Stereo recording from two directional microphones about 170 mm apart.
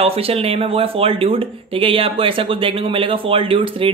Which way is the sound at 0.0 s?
35° right (ahead or behind).